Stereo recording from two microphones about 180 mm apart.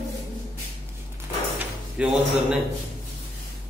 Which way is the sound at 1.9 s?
5° right (ahead or behind).